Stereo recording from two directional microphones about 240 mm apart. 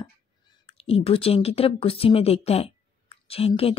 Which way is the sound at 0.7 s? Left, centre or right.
Left.